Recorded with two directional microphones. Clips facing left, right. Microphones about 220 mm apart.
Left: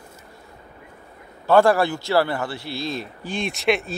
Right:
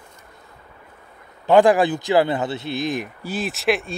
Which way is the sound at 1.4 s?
15° right (ahead or behind).